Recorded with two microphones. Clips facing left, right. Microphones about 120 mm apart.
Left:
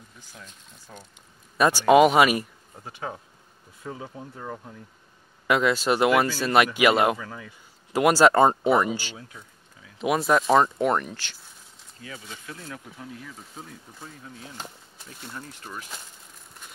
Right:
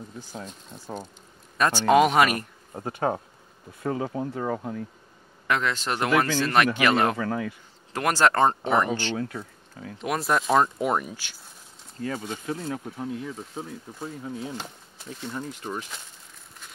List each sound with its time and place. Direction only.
0.3 s speech: 35° right (ahead or behind)
1.6 s speech: 10° left (ahead or behind)
2.7 s speech: 50° right (ahead or behind)
3.8 s speech: 75° right (ahead or behind)
5.5 s speech: 10° left (ahead or behind)
7.2 s speech: 75° right (ahead or behind)
7.9 s speech: 10° left (ahead or behind)
9.1 s speech: 65° right (ahead or behind)
9.9 s speech: centre (ahead or behind)
12.0 s speech: 45° right (ahead or behind); by 15.8 s 20° right (ahead or behind)